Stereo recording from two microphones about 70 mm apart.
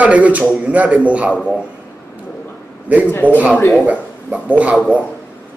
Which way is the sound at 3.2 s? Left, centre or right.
Left.